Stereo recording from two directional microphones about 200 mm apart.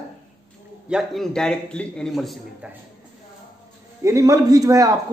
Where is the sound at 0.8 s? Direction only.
Centre (ahead or behind).